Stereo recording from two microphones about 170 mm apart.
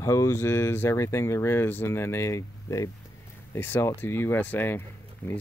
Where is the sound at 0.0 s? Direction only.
15° left (ahead or behind).